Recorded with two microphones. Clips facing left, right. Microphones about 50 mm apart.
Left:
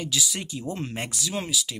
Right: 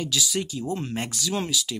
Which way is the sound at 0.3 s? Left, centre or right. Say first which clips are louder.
Right 4 dB; left.